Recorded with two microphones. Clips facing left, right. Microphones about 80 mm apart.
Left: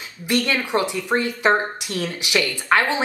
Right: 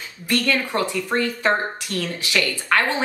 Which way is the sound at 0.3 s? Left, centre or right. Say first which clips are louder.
Left 1 dB; centre.